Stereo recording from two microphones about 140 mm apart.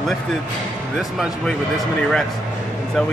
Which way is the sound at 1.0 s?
Centre (ahead or behind).